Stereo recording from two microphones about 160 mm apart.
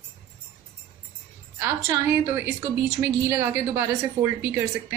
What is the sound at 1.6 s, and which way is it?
A woman's voice, 15° right (ahead or behind).